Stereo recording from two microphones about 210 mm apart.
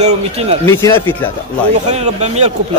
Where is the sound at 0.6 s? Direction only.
10° left (ahead or behind).